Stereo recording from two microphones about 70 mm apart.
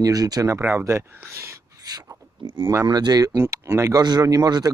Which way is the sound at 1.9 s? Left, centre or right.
Right.